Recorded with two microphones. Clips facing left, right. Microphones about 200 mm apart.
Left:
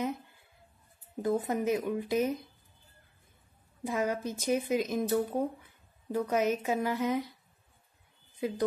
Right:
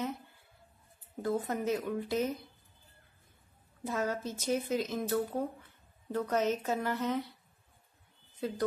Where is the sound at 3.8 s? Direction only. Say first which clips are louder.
Left 3 dB; 15° left (ahead or behind).